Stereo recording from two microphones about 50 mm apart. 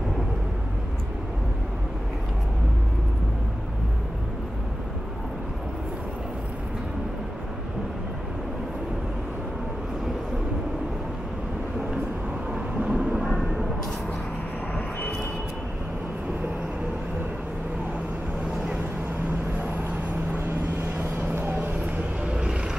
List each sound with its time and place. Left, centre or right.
12.5 s vehicle: centre
13.2 s a sound: centre
21.4 s vehicle: right
21.7 s vehicle: right